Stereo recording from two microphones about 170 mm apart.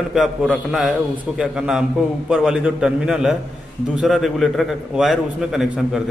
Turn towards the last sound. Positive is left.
turn(degrees=-5)  # may be behind; listen again after turning